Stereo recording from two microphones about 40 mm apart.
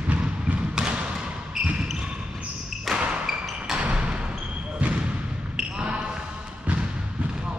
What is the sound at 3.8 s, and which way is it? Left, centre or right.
Thump, right.